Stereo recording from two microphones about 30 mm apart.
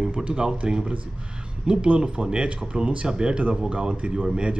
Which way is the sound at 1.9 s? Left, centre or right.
Right.